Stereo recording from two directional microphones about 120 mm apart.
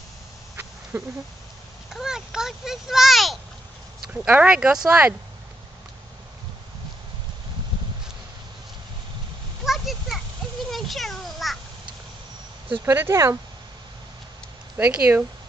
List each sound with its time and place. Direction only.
0.9 s speech: 20° right (ahead or behind)
2.0 s a child's voice: 5° right (ahead or behind)
4.1 s speech: 10° right (ahead or behind)
9.7 s a sound: centre (ahead or behind)
12.8 s speech: 20° right (ahead or behind)
14.8 s speech: 10° right (ahead or behind)